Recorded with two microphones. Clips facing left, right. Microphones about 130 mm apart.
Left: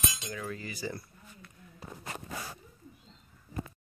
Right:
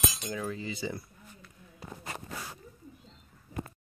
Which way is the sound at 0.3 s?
20° right (ahead or behind).